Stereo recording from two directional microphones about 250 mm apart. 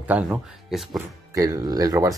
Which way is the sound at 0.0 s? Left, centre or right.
Centre.